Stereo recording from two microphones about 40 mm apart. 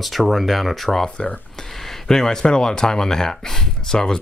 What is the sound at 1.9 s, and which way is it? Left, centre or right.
Speech, centre.